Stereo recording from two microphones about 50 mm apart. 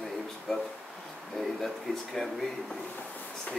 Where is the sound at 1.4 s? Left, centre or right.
Centre.